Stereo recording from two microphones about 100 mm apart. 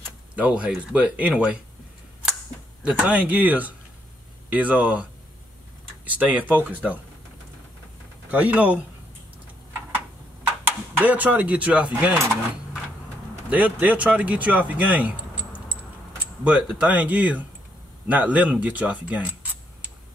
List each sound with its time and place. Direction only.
0.4 s speech: 10° right (ahead or behind)
2.8 s speech: 15° right (ahead or behind)
6.0 s speech: 15° right (ahead or behind)
8.3 s speech: 15° right (ahead or behind)
11.0 s speech: 15° right (ahead or behind)
13.5 s speech: 15° right (ahead or behind)
15.7 s keys jangling: 15° right (ahead or behind)
16.8 s speech: 15° right (ahead or behind)